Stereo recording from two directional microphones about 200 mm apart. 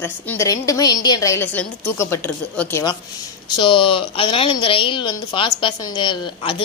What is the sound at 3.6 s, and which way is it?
Speech, 25° left (ahead or behind).